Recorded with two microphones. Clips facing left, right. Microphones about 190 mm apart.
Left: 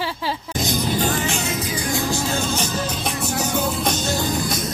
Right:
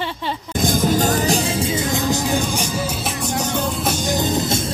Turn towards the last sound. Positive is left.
turn(degrees=-25)  # may be behind; listen again after turning